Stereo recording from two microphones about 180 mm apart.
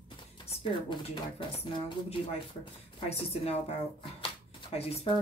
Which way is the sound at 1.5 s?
35° left (ahead or behind).